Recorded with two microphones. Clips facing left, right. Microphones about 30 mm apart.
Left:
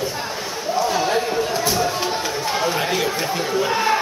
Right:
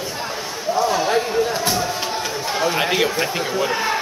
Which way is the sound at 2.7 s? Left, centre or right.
Right.